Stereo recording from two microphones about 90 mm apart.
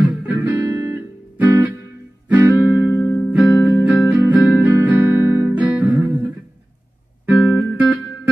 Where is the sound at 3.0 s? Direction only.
20° left (ahead or behind).